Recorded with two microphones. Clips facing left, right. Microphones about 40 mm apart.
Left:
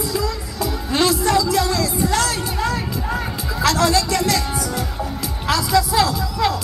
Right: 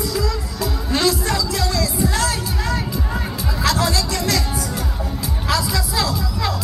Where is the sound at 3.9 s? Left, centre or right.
Left.